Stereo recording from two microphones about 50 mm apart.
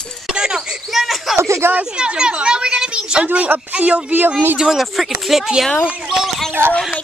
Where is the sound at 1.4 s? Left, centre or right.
Right.